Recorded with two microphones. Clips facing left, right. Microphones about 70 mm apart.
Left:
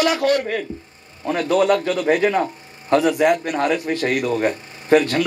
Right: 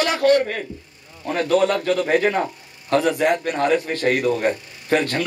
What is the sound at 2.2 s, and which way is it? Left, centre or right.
Speech, right.